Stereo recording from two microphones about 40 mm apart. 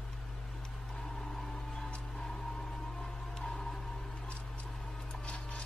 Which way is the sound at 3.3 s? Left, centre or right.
Centre.